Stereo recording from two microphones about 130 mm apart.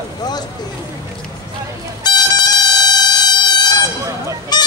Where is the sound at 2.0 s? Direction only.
35° left (ahead or behind).